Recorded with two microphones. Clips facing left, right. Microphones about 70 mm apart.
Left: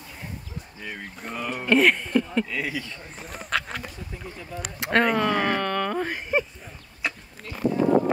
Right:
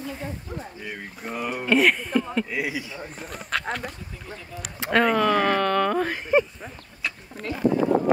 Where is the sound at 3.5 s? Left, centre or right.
Centre.